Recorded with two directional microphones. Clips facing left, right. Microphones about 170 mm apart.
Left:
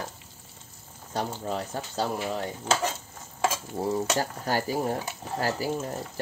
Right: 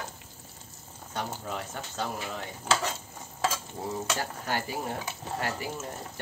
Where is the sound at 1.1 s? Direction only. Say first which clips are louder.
Left 4 dB; 35° left (ahead or behind).